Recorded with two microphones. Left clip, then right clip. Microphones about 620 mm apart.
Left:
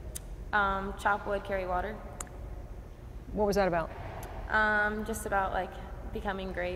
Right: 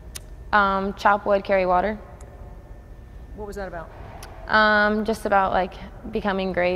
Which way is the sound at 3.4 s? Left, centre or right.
Left.